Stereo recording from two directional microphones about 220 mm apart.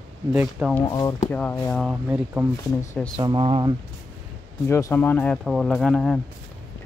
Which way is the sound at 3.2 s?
20° right (ahead or behind).